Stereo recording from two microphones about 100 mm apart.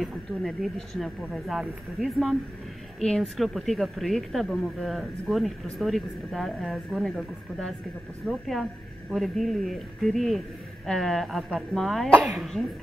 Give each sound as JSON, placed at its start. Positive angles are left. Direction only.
{"t": 0.0, "sound": "speech", "side_deg": 0}